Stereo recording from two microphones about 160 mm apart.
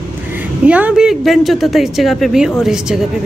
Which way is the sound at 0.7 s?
10° right (ahead or behind).